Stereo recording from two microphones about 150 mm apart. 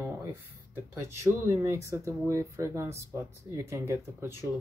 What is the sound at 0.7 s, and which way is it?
Speech, 15° right (ahead or behind).